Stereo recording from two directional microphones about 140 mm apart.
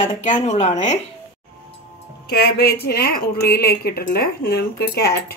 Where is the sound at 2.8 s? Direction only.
90° left.